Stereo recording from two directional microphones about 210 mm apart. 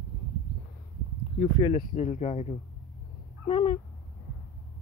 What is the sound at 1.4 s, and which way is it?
Speech, 25° left (ahead or behind).